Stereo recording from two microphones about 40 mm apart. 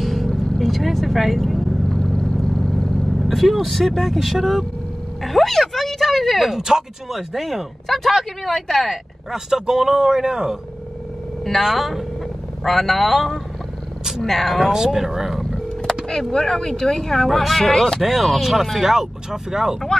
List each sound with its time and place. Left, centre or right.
0.0 s vehicle: centre
2.0 s vehicle: centre
5.2 s speech: centre
6.5 s speech: centre
9.3 s a man's voice: centre
11.7 s speech: centre
14.7 s a man's voice: centre
16.1 s speech: centre
18.0 s speech: centre